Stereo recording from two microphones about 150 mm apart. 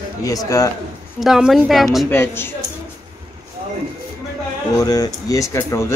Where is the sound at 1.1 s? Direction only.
Centre (ahead or behind).